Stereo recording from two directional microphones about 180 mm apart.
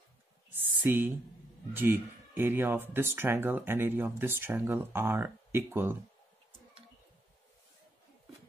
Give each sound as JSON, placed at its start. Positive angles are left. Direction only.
{"t": 0.8, "sound": "speech", "side_deg": -10}